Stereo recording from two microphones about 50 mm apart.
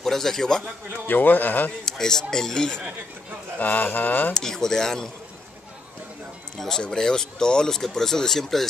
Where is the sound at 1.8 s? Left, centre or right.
Centre.